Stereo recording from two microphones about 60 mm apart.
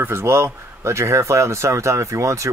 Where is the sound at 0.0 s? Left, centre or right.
Right.